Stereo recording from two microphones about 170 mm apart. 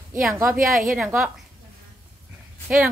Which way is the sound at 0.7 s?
5° right (ahead or behind).